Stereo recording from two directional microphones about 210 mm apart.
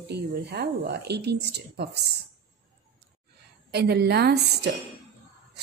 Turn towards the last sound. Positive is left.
turn(degrees=-50)  # may be behind; listen again after turning